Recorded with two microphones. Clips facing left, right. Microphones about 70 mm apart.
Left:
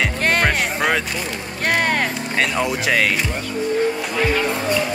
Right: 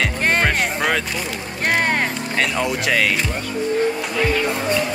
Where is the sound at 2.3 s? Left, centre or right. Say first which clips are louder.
Left 1 dB; centre.